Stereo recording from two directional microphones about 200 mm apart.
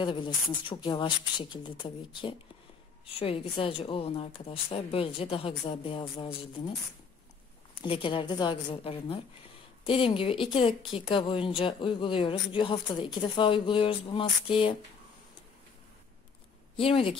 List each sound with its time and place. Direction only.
0.0 s speech: 25° left (ahead or behind)
7.8 s speech: 25° left (ahead or behind)
16.7 s speech: 25° left (ahead or behind)